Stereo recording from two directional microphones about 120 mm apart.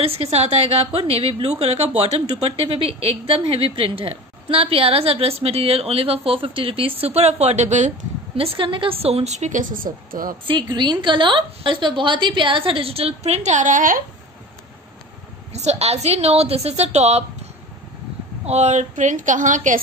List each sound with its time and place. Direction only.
0.0 s a woman's voice: 55° right (ahead or behind); by 7.9 s 80° right
8.4 s a woman's voice: 50° right (ahead or behind); by 9.7 s 80° right
10.4 s a woman's voice: 40° right (ahead or behind); by 13.8 s 90° right
15.5 s a woman's voice: 65° right (ahead or behind)
18.4 s a woman's voice: 65° right (ahead or behind); by 19.8 s 90° right